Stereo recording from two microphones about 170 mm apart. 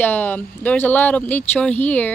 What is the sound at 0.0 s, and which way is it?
Speech, 10° left (ahead or behind).